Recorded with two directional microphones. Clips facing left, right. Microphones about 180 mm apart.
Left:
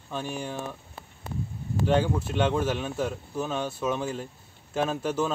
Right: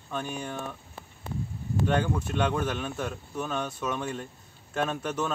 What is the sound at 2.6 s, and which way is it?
A man's voice, 5° left (ahead or behind).